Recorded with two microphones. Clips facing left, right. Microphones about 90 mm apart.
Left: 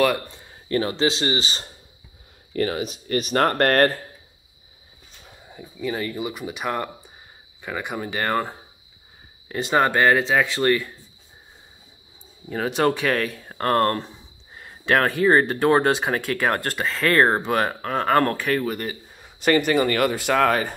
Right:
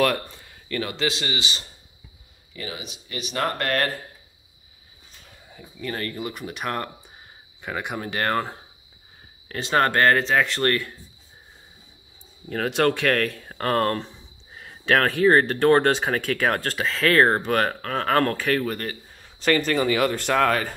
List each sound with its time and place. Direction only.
0.4 s speech: 30° left (ahead or behind)
2.5 s speech: 50° left (ahead or behind)
5.5 s speech: 15° left (ahead or behind)
12.4 s speech: 5° left (ahead or behind)